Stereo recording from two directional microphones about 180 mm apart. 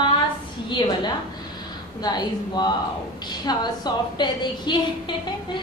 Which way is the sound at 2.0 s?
25° left (ahead or behind).